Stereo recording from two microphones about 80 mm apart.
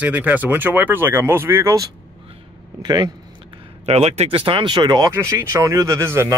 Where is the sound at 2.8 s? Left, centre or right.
Right.